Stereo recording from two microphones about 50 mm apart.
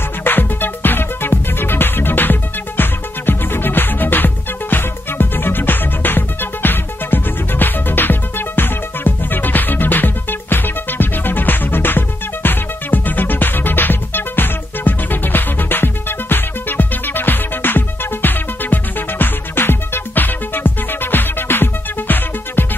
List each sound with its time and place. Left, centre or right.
0.2 s music: left